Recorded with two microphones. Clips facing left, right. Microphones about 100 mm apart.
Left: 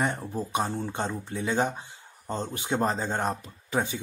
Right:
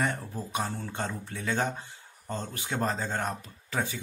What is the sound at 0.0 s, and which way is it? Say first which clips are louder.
A man's voice: left 2 dB; 20° left (ahead or behind).